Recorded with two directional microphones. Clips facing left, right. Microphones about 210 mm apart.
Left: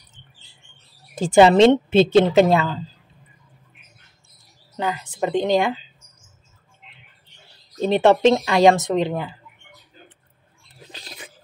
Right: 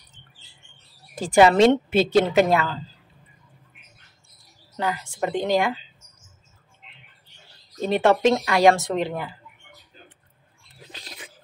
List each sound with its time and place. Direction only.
1.1 s a woman's voice: 25° left (ahead or behind)
4.7 s a woman's voice: 20° left (ahead or behind)
7.8 s a woman's voice: 25° left (ahead or behind)
10.9 s a sound: 35° left (ahead or behind)